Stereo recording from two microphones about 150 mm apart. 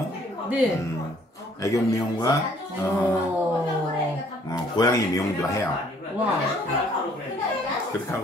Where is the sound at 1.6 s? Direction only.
20° left (ahead or behind).